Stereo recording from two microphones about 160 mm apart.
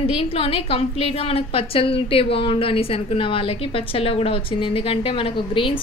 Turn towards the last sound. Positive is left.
turn(degrees=35)  # may be behind; listen again after turning